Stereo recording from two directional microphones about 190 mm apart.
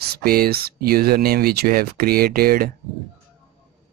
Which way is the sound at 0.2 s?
55° right (ahead or behind).